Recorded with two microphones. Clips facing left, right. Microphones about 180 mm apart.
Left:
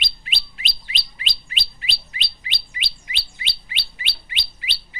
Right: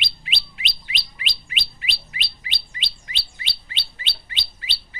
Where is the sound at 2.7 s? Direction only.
15° left (ahead or behind).